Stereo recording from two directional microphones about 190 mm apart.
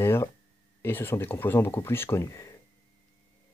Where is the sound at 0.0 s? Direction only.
15° left (ahead or behind).